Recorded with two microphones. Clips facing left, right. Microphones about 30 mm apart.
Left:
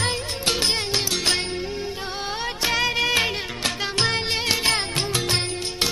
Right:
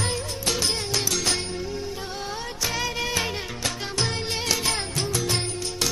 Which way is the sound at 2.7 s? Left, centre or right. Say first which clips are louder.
Left 6 dB; left.